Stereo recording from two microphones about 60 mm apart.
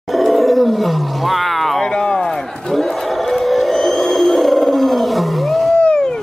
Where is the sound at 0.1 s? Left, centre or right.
Centre.